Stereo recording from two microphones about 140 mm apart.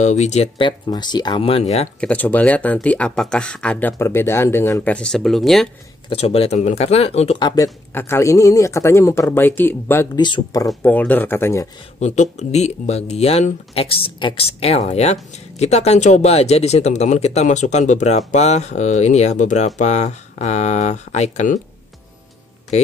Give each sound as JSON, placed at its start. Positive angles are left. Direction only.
{"t": 0.0, "sound": "speech", "side_deg": 55}
{"t": 0.6, "sound": "speech", "side_deg": 35}
{"t": 2.0, "sound": "speech", "side_deg": 10}
{"t": 4.9, "sound": "speech", "side_deg": 5}
{"t": 6.0, "sound": "speech", "side_deg": 45}
{"t": 7.3, "sound": "speech", "side_deg": 30}
{"t": 10.1, "sound": "speech", "side_deg": 30}
{"t": 10.8, "sound": "speech", "side_deg": 10}
{"t": 12.0, "sound": "speech", "side_deg": 55}